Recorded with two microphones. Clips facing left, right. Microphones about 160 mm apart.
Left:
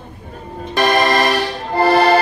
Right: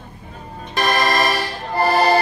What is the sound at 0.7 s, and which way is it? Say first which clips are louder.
Music: left 4 dB; 65° left (ahead or behind).